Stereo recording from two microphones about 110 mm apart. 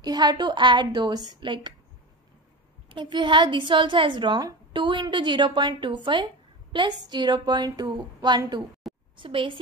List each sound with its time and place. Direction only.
0.0 s a woman's voice: 40° right (ahead or behind)
2.9 s a woman's voice: 45° right (ahead or behind)